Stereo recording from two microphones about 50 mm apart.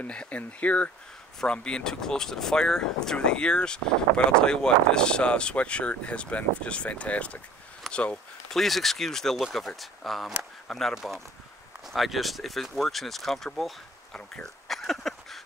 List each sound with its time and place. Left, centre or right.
0.0 s speech: left
8.5 s speech: centre
14.1 s speech: centre
14.7 s a sound: centre